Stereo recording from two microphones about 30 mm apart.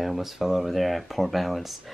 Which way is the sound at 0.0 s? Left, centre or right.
Centre.